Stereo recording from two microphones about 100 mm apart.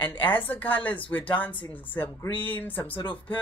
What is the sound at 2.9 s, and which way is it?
Speech, 55° left (ahead or behind).